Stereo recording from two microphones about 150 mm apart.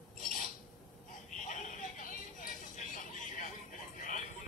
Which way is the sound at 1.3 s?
55° left (ahead or behind).